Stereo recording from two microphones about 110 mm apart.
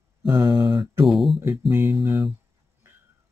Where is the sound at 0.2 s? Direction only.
40° right (ahead or behind).